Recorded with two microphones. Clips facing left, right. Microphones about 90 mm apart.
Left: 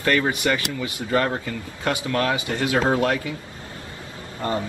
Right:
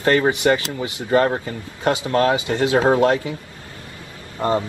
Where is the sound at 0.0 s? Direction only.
30° right (ahead or behind).